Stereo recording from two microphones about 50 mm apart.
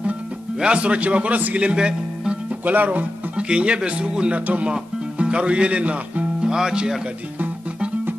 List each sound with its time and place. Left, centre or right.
0.6 s a man's voice: right
2.6 s speech: right
3.4 s a man's voice: right
6.4 s speech: centre